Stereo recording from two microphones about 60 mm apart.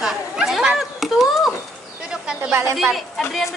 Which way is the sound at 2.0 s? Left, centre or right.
Centre.